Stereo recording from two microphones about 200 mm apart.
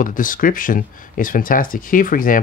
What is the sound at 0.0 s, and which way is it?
Speech, 40° left (ahead or behind).